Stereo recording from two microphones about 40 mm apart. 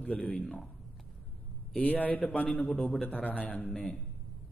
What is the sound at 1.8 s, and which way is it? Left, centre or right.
A man's voice, left.